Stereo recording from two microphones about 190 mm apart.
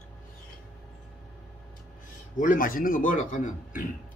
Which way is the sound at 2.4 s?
45° left (ahead or behind).